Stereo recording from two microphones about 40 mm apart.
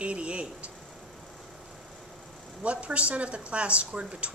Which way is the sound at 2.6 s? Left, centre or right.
Right.